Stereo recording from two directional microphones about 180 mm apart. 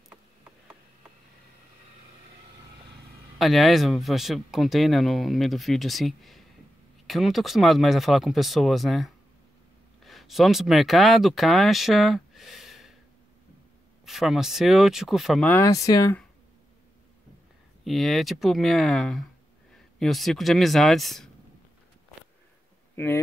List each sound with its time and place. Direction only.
3.3 s speech: centre (ahead or behind)
14.0 s speech: centre (ahead or behind)
15.5 s speech: 15° left (ahead or behind)
17.8 s speech: centre (ahead or behind)